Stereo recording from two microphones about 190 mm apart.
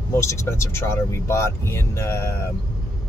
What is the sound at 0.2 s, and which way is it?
Speech, 15° left (ahead or behind).